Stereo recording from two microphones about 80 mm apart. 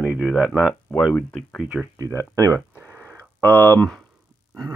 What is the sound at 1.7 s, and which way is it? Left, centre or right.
Speech, centre.